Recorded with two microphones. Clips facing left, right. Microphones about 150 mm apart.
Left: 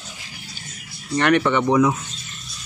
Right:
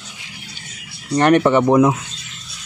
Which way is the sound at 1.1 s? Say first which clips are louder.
Right 5 dB; 35° right (ahead or behind).